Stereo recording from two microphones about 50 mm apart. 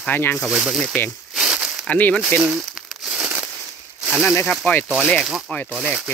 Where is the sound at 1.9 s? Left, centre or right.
Left.